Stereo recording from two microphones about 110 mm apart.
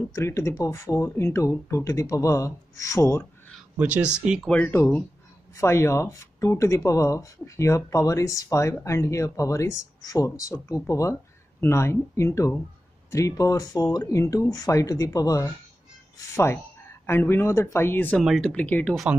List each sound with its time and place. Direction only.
0.1 s speech: 25° left (ahead or behind)
3.7 s speech: 15° right (ahead or behind)
4.5 s speech: 15° left (ahead or behind)
4.7 s speech: 25° left (ahead or behind)
17.0 s speech: 20° left (ahead or behind)
18.2 s speech: 5° left (ahead or behind)